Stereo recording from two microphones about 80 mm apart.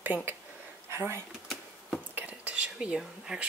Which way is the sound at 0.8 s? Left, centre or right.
Right.